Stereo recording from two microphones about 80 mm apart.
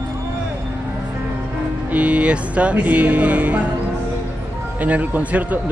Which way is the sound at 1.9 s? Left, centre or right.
Centre.